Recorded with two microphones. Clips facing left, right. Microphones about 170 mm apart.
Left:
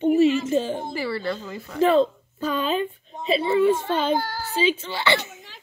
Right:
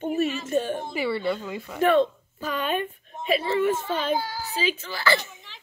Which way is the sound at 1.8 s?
25° left (ahead or behind).